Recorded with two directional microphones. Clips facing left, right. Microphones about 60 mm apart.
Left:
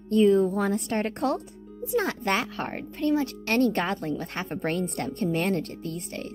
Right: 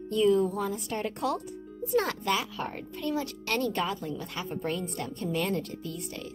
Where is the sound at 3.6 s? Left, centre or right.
Left.